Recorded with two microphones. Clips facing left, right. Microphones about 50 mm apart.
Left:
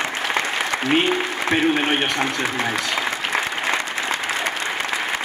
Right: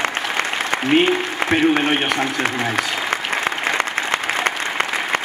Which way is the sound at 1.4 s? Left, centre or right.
Right.